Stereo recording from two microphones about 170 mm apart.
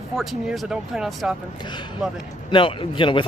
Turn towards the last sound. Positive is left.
turn(degrees=30)  # may be behind; listen again after turning